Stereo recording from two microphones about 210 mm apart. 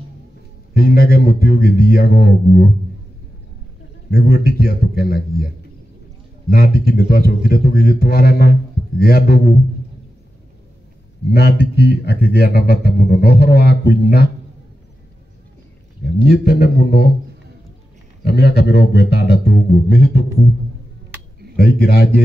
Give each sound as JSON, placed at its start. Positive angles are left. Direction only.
{"t": 0.7, "sound": "a man's voice", "side_deg": 45}
{"t": 4.1, "sound": "a man's voice", "side_deg": 45}
{"t": 6.5, "sound": "a man's voice", "side_deg": 45}
{"t": 11.2, "sound": "a man's voice", "side_deg": 50}
{"t": 16.3, "sound": "a man's voice", "side_deg": 50}
{"t": 18.2, "sound": "a man's voice", "side_deg": 50}
{"t": 21.5, "sound": "a man's voice", "side_deg": 50}